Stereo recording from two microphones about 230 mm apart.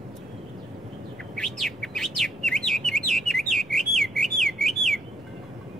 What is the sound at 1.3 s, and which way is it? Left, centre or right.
Chirp, centre.